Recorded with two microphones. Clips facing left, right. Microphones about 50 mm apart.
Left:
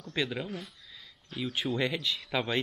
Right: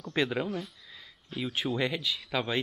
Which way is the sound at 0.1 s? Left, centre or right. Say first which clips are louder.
Right 4 dB; centre.